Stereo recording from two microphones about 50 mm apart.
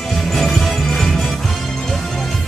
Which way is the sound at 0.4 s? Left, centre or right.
Centre.